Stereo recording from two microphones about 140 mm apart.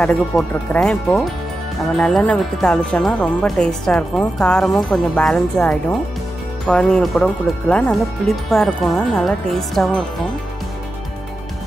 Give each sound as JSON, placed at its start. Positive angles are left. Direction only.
{"t": 0.0, "sound": "speech", "side_deg": 5}